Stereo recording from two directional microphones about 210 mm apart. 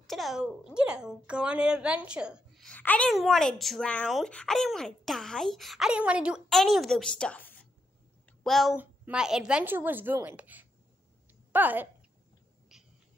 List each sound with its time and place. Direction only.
0.0 s a woman's voice: centre (ahead or behind)